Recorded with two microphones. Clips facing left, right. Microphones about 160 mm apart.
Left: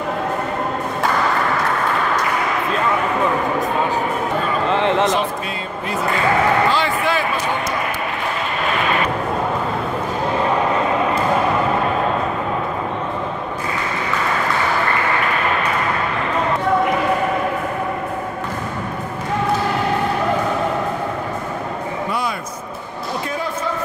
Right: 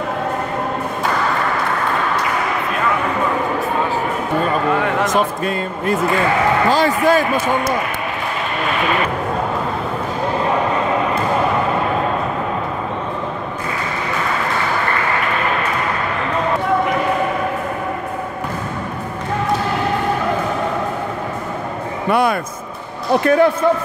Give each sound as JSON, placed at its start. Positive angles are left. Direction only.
{"t": 4.7, "sound": "a sound", "side_deg": 25}
{"t": 6.7, "sound": "speech", "side_deg": -40}
{"t": 22.1, "sound": "vehicle", "side_deg": -60}
{"t": 23.2, "sound": "a man's voice", "side_deg": -65}